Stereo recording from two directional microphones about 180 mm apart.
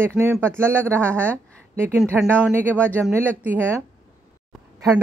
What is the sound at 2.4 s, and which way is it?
Speech, 10° right (ahead or behind).